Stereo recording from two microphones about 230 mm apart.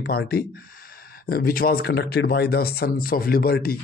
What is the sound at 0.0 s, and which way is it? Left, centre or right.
Speech, left.